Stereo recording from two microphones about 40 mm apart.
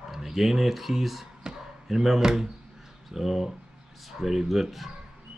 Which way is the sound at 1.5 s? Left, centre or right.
Right.